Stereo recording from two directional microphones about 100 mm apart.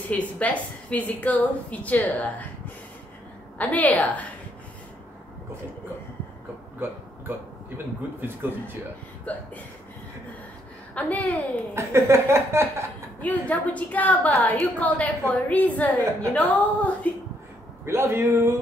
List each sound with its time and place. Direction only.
0.1 s a woman's voice: 15° left (ahead or behind)
3.5 s a woman's voice: 15° left (ahead or behind)
6.8 s a man's voice: 20° right (ahead or behind)
11.0 s a woman's voice: 15° left (ahead or behind)
11.7 s speech: 25° right (ahead or behind)
13.2 s a woman's voice: 15° left (ahead or behind)
17.8 s speech: 25° right (ahead or behind)